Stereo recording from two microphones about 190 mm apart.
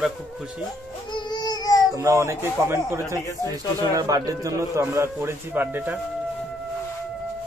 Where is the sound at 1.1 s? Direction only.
20° left (ahead or behind).